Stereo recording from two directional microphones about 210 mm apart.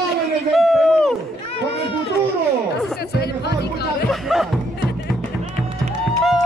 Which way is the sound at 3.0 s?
50° left (ahead or behind).